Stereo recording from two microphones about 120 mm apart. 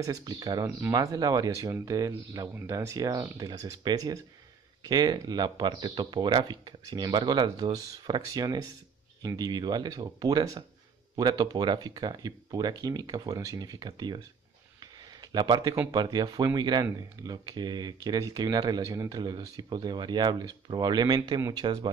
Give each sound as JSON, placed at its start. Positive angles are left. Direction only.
{"t": 0.0, "sound": "speech", "side_deg": -30}
{"t": 15.3, "sound": "speech", "side_deg": -35}